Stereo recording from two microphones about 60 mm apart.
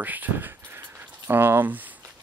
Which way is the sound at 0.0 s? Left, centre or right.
Right.